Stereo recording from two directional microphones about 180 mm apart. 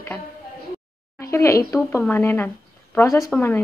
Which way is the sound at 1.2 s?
15° left (ahead or behind).